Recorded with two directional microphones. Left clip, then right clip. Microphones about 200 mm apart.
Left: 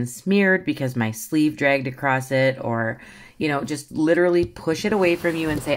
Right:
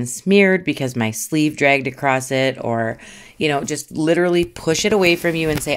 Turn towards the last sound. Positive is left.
turn(degrees=-35)  # may be behind; listen again after turning